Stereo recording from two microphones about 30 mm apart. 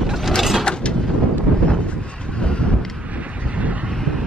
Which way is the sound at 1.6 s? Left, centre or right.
Left.